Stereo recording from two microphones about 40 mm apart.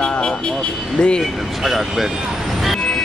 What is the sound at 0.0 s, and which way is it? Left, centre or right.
Vehicle, left.